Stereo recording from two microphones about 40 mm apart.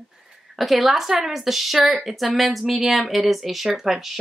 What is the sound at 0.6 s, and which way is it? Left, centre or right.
Speech, centre.